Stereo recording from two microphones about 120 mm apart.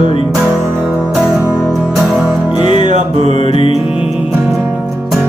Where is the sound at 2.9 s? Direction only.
70° right (ahead or behind).